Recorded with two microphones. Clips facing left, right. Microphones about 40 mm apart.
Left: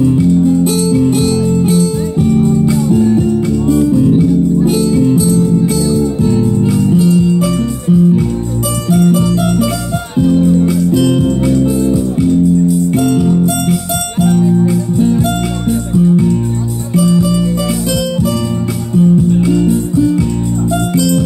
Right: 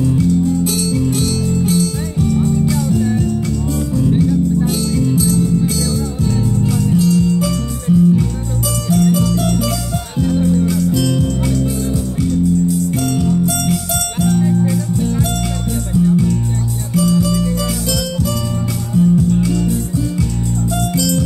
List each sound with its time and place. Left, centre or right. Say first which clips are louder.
0.0 s music: left 5 dB; left
16.9 s music: left 4 dB; left
18.9 s music: left 4 dB; left